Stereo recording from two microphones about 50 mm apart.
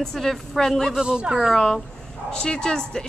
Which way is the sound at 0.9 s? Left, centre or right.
Centre.